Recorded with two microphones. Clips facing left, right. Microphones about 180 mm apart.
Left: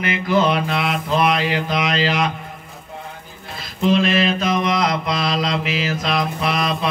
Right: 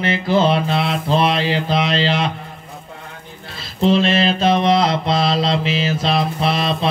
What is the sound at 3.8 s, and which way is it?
Mantra, 30° right (ahead or behind).